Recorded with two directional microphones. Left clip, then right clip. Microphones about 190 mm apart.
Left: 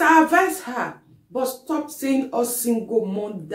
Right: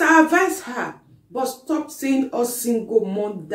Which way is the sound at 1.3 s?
5° left (ahead or behind).